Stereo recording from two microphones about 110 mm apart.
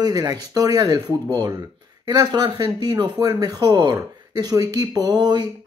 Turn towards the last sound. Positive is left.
turn(degrees=-40)  # may be behind; listen again after turning